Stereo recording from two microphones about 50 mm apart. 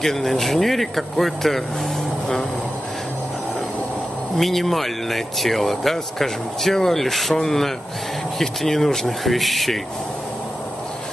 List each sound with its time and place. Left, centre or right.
0.0 s speech: centre
4.4 s speech: centre